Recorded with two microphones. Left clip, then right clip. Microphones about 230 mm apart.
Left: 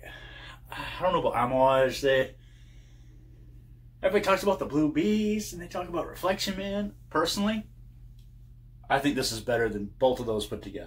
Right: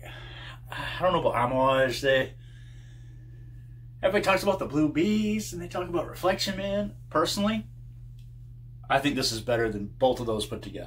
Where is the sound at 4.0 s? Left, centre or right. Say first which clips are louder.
Right 1 dB; centre.